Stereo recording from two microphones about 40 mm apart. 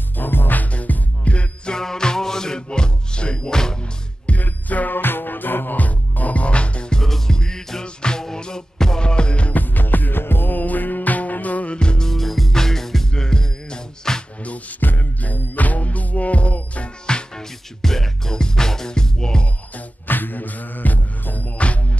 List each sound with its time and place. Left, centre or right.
0.2 s music: left
1.7 s music: centre
4.3 s music: left
4.9 s music: left
7.0 s music: centre
9.5 s music: left
11.7 s music: left
12.1 s music: centre
14.4 s music: left
14.8 s music: left
17.0 s music: centre
20.1 s music: left